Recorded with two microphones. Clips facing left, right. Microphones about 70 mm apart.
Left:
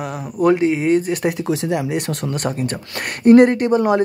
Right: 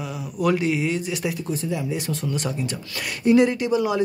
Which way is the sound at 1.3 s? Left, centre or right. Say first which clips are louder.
Left 7 dB; left.